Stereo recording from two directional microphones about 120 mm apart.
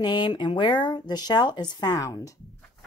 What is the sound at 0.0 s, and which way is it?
A woman's voice, 40° left (ahead or behind).